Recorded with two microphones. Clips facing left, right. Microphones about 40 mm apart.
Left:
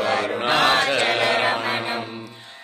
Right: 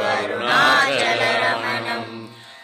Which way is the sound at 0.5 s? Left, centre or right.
Right.